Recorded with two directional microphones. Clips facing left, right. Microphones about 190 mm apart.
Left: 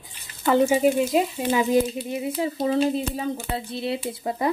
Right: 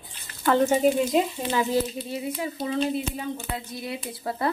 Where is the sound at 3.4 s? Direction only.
30° left (ahead or behind).